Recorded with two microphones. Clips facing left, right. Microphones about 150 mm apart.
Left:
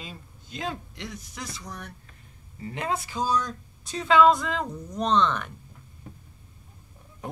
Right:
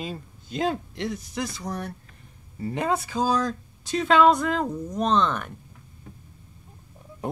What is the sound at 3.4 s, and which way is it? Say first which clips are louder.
Speech: right 5 dB; 90° right.